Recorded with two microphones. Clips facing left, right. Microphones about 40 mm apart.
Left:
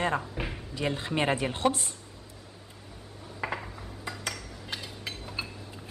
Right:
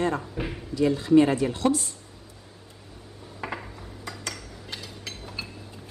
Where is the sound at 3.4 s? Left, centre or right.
Centre.